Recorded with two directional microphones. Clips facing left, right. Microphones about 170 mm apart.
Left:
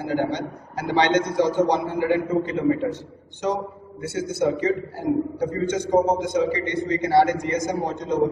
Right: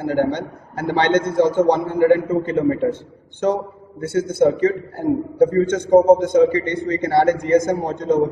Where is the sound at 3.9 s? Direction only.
50° right (ahead or behind).